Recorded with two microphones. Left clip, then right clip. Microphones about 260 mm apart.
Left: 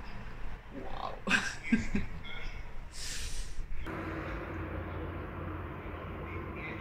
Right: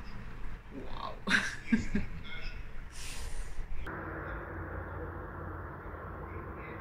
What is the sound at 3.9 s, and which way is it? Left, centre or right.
Vehicle, left.